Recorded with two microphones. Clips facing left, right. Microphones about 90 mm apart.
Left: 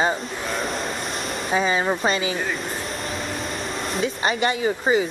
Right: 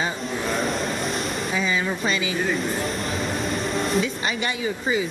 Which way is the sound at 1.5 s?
35° left (ahead or behind).